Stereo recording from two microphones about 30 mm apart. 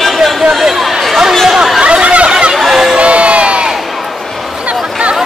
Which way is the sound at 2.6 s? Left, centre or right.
Centre.